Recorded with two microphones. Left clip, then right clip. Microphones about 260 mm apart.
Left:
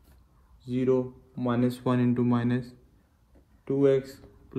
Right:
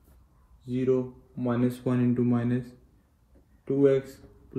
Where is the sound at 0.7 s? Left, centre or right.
Left.